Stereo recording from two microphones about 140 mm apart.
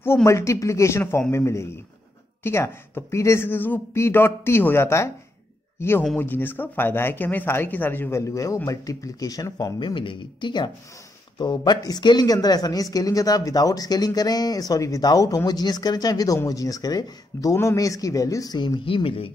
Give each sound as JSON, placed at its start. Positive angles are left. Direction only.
{"t": 0.0, "sound": "speech", "side_deg": 20}
{"t": 18.9, "sound": "speech", "side_deg": 40}